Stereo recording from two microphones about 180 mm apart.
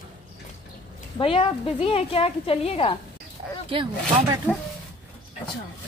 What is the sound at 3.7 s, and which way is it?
Speech, 25° right (ahead or behind).